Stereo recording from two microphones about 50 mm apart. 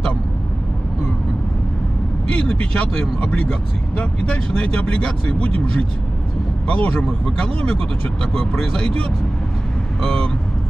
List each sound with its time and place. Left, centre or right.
2.3 s speech: left
8.2 s speech: centre